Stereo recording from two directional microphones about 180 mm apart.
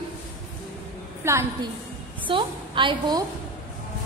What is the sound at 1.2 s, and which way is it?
Speech, 15° right (ahead or behind).